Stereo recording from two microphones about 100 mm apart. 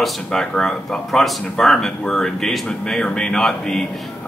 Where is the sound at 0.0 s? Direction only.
5° left (ahead or behind).